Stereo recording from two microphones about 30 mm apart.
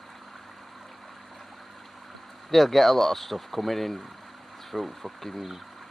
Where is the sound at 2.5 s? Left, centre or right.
Centre.